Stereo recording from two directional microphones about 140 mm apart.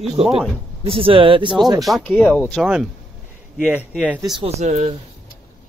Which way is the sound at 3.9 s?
10° right (ahead or behind).